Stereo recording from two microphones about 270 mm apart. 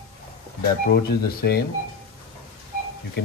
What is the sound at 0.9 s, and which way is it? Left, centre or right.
Speech, left.